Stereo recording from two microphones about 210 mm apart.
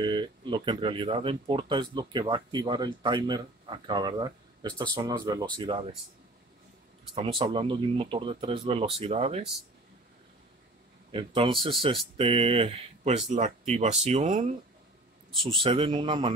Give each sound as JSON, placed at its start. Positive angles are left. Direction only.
{"t": 0.0, "sound": "speech", "side_deg": -20}
{"t": 7.2, "sound": "speech", "side_deg": -25}
{"t": 11.1, "sound": "speech", "side_deg": -25}
{"t": 15.6, "sound": "speech", "side_deg": -25}